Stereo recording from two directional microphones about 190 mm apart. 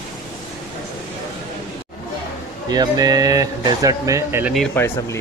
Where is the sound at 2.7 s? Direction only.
20° right (ahead or behind).